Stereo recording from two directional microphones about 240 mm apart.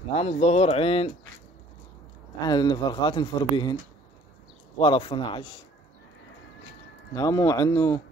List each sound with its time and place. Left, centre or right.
0.1 s speech: left
2.4 s speech: centre
4.7 s speech: centre
7.2 s speech: centre